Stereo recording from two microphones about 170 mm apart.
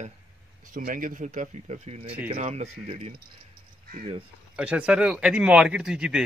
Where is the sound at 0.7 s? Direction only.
50° right (ahead or behind).